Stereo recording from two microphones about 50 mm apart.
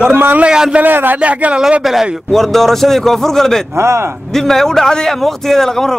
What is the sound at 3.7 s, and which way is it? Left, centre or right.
Speech, right.